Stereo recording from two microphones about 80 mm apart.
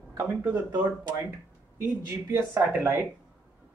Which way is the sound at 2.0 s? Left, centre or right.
Right.